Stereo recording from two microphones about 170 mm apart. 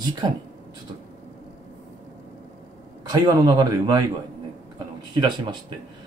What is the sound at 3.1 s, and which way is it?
Speech, 20° right (ahead or behind).